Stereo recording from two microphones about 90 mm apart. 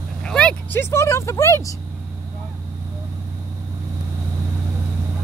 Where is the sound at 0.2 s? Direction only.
10° left (ahead or behind).